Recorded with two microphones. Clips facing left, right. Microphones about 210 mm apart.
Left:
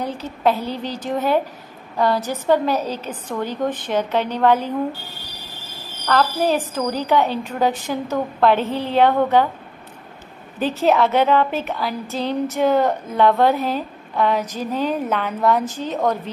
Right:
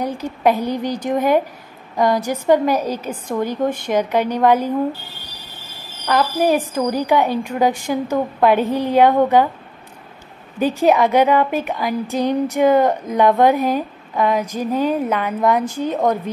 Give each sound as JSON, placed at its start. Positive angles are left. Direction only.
{"t": 0.0, "sound": "a woman's voice", "side_deg": -15}
{"t": 6.0, "sound": "a woman's voice", "side_deg": -10}
{"t": 10.6, "sound": "a woman's voice", "side_deg": -10}